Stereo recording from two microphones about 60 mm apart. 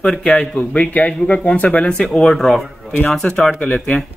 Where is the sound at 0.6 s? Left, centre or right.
Left.